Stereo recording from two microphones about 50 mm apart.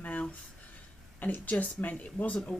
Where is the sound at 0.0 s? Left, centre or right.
Left.